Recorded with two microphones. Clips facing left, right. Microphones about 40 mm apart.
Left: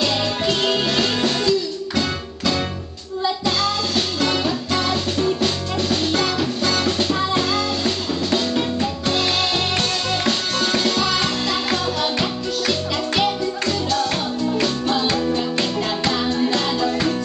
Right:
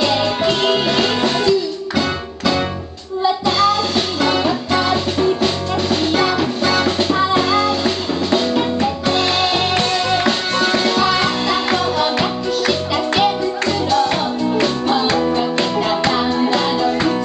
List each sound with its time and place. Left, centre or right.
0.0 s music: centre